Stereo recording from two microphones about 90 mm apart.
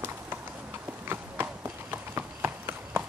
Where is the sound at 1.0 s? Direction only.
25° right (ahead or behind).